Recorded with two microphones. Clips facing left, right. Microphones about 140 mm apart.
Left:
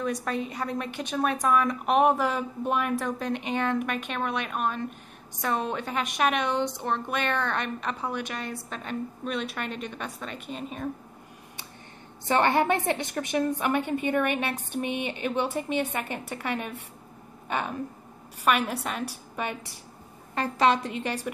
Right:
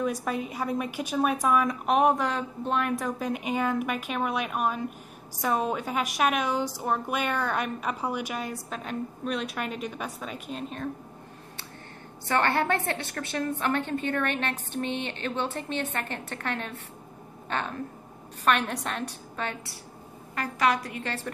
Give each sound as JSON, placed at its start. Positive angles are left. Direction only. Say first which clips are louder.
{"t": 0.0, "sound": "a woman's voice", "louder": "even", "side_deg": -5}
{"t": 12.3, "sound": "a woman's voice", "louder": "left 2 dB", "side_deg": 15}
{"t": 20.3, "sound": "a woman's voice", "louder": "left 3 dB", "side_deg": 25}